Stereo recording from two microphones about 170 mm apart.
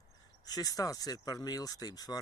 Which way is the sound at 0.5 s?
20° left (ahead or behind).